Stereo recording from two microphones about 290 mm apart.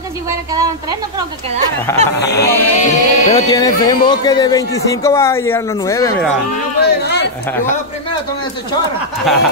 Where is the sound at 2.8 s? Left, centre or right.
Left.